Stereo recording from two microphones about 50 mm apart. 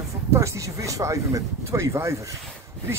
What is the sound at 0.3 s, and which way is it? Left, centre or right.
Speech, right.